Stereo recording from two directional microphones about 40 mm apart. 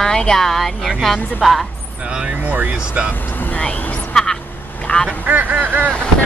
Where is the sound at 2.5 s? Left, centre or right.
Right.